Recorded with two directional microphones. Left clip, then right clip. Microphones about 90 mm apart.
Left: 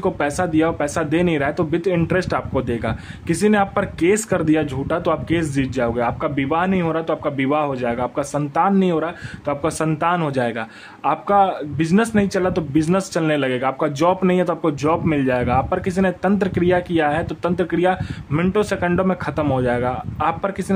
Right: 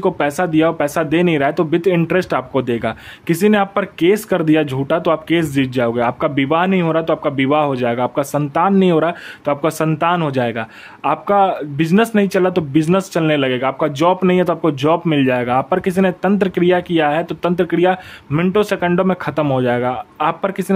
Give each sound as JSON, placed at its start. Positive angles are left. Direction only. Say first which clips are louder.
{"t": 0.0, "sound": "speech", "louder": "right 4 dB", "side_deg": -25}
{"t": 9.6, "sound": "speech", "louder": "right 2 dB", "side_deg": -25}